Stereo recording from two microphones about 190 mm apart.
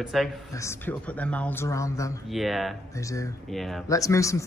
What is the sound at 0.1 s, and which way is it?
Speech, centre (ahead or behind).